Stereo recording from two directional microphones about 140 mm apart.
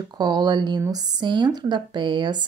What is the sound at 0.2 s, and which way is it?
Speech, 30° right (ahead or behind).